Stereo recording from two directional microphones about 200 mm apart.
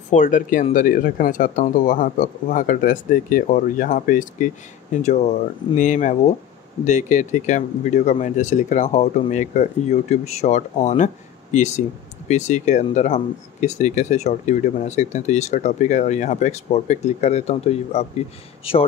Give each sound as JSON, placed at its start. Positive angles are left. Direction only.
{"t": 0.1, "sound": "speech", "side_deg": 40}